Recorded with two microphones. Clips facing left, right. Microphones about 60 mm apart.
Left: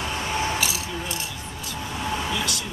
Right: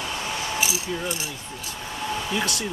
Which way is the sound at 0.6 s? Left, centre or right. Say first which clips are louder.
Right 1 dB; centre.